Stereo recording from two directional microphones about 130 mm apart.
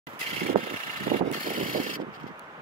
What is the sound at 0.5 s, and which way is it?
Vehicle, 70° right (ahead or behind).